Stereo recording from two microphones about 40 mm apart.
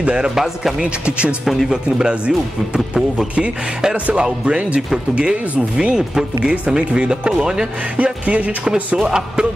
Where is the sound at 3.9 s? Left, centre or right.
Right.